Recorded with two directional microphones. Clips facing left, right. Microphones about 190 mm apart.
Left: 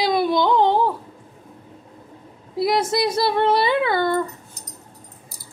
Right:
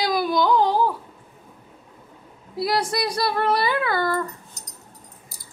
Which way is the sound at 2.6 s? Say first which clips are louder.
Left 4 dB; 20° left (ahead or behind).